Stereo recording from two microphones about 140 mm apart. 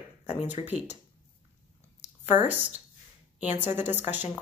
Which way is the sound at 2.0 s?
55° left (ahead or behind).